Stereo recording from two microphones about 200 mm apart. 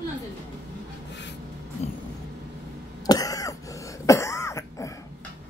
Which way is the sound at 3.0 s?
20° left (ahead or behind).